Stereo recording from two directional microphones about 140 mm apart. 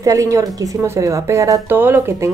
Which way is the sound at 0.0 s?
25° right (ahead or behind).